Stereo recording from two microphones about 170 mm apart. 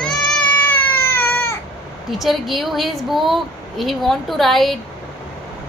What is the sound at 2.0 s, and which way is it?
A woman's voice, centre (ahead or behind).